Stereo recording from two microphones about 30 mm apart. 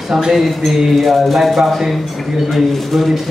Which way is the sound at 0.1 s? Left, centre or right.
Centre.